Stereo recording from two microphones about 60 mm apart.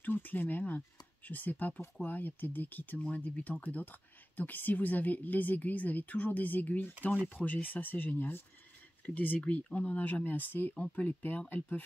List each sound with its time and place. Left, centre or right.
0.0 s speech: left